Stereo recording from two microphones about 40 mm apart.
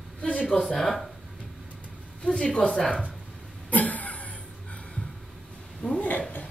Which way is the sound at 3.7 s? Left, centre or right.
Left.